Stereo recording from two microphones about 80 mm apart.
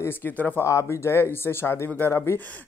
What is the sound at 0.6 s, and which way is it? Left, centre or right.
A man's voice, left.